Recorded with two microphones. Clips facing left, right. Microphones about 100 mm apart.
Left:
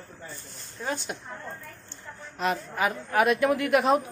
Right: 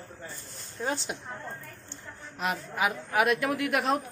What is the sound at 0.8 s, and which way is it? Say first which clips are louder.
Speech: even; 25° right (ahead or behind).